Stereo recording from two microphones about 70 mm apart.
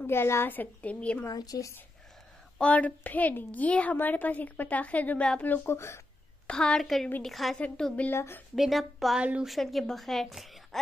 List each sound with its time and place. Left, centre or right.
0.0 s a woman's voice: left
1.3 s speech: left
2.6 s a woman's voice: centre
6.5 s a woman's voice: centre
7.5 s a woman's voice: centre
8.1 s a woman's voice: left
8.5 s a woman's voice: centre